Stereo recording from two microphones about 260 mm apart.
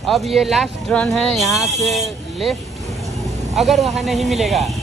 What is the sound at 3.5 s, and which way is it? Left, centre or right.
Speech, centre.